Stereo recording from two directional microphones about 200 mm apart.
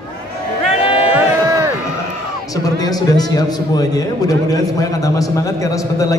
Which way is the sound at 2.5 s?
20° left (ahead or behind).